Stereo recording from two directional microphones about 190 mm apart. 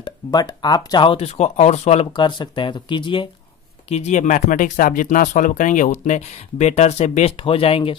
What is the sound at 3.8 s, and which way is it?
Speech, 35° left (ahead or behind).